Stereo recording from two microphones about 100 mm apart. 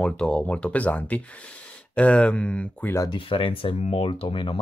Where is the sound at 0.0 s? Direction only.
10° left (ahead or behind).